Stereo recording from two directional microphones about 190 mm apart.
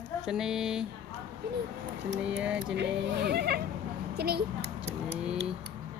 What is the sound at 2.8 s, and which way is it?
Speech, 60° right (ahead or behind).